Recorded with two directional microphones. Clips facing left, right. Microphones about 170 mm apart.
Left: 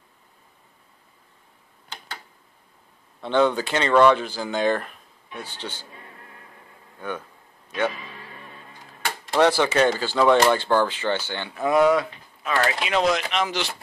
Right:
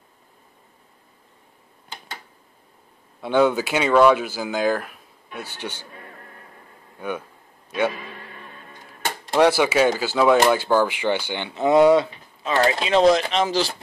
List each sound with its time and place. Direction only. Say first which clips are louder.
3.2 s speech: right 2 dB; 10° right (ahead or behind)
7.0 s speech: right 3 dB; 10° right (ahead or behind)
9.0 s speech: right 2 dB; 15° right (ahead or behind); by 13.7 s 35° right (ahead or behind)